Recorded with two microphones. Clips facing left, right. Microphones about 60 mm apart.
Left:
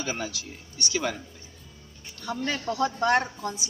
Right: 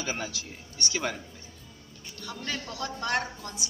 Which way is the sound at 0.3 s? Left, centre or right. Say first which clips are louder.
Left 1 dB; right.